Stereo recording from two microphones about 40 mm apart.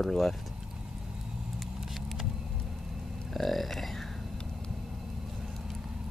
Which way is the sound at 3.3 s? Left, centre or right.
Centre.